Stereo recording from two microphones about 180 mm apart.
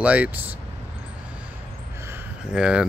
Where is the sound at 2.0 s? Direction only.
5° right (ahead or behind).